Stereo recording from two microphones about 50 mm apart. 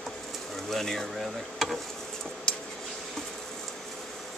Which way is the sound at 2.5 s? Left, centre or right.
Centre.